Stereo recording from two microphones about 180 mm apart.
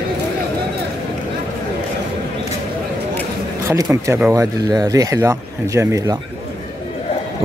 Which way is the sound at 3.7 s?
15° right (ahead or behind).